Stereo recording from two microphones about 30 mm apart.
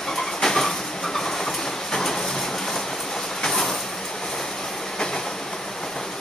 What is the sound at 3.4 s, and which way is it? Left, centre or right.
Vehicle, centre.